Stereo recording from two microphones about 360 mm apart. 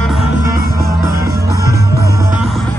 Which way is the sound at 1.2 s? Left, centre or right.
Right.